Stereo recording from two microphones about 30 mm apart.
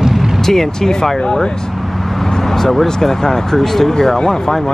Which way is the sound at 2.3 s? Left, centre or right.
Centre.